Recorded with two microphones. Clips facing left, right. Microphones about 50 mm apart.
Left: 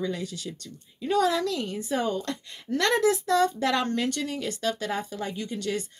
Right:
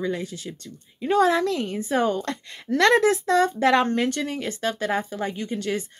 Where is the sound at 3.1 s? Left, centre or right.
Right.